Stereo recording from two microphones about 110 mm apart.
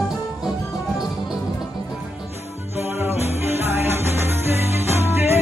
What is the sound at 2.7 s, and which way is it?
Music, 25° right (ahead or behind).